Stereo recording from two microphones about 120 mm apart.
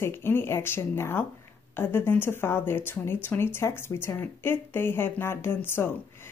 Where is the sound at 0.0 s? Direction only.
20° left (ahead or behind).